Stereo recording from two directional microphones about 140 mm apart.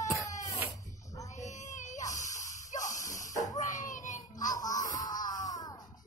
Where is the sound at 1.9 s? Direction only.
25° left (ahead or behind).